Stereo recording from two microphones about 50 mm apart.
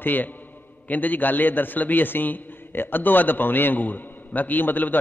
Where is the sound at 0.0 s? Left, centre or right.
Left.